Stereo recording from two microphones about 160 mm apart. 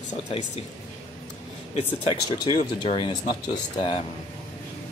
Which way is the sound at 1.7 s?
35° left (ahead or behind).